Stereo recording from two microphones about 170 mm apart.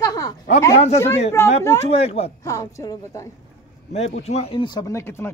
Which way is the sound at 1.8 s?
35° left (ahead or behind).